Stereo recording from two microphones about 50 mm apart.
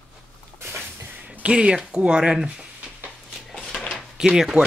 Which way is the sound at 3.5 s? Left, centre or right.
Centre.